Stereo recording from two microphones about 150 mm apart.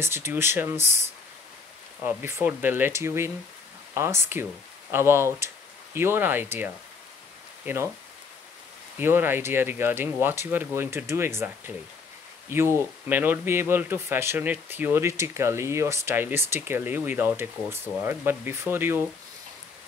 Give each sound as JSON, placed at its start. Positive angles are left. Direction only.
{"t": 0.0, "sound": "speech", "side_deg": -15}
{"t": 2.0, "sound": "speech", "side_deg": -15}
{"t": 8.9, "sound": "speech", "side_deg": -15}